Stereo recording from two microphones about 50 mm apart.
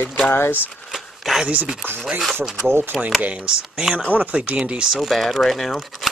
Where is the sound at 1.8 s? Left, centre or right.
Right.